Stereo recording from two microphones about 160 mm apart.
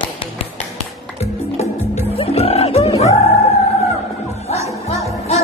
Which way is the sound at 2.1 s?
40° left (ahead or behind).